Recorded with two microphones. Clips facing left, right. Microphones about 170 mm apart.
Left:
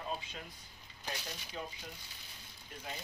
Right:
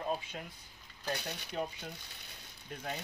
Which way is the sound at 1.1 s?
65° right (ahead or behind).